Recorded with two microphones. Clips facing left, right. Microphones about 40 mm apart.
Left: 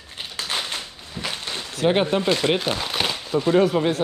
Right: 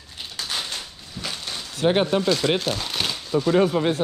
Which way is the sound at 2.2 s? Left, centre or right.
Left.